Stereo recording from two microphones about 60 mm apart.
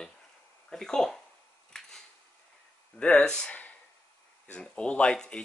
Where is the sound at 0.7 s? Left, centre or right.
Centre.